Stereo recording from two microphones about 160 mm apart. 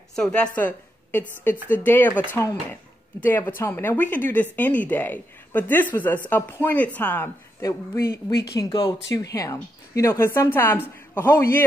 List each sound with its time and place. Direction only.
0.1 s a woman's voice: 5° left (ahead or behind)
8.5 s speech: 25° left (ahead or behind)